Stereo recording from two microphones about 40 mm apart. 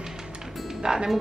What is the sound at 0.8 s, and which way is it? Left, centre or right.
Speech, centre.